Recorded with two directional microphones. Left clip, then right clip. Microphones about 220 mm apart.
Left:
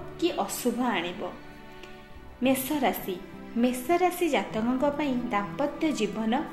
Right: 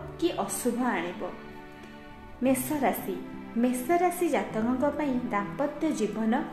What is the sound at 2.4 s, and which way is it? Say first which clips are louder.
A woman's voice: left 1 dB; 25° left (ahead or behind).